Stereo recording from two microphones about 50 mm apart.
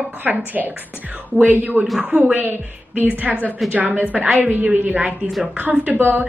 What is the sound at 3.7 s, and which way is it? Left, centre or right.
A woman's voice, right.